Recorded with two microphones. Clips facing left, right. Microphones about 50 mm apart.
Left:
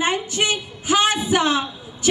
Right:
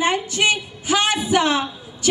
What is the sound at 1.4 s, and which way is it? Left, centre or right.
Speech, right.